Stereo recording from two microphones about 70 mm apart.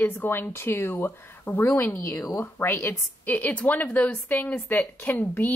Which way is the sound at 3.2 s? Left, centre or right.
Left.